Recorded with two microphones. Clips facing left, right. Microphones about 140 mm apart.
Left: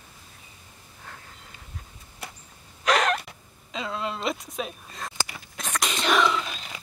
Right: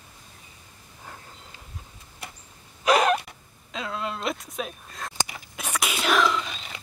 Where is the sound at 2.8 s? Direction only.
10° right (ahead or behind).